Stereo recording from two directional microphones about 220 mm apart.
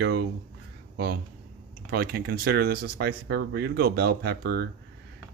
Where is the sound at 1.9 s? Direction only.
45° right (ahead or behind).